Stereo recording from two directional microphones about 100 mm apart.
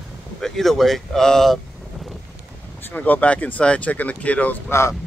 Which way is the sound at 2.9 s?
15° left (ahead or behind).